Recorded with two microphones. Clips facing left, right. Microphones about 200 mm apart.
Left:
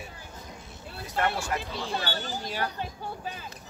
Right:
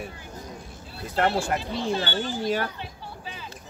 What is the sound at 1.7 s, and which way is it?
Speech, 25° right (ahead or behind).